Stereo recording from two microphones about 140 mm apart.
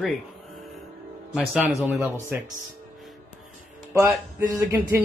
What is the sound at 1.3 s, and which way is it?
Speech, 5° right (ahead or behind).